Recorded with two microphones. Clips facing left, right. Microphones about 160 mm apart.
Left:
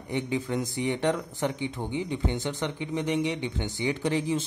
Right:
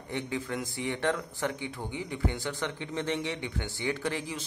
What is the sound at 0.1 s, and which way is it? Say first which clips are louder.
A man's voice: left 5 dB; 20° left (ahead or behind).